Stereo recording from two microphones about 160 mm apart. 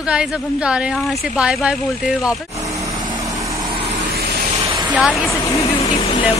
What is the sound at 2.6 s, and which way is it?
Vehicle, 20° right (ahead or behind).